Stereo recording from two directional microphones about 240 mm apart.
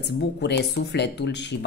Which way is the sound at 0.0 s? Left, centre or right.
Left.